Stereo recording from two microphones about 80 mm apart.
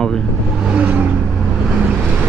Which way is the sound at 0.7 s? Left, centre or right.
Centre.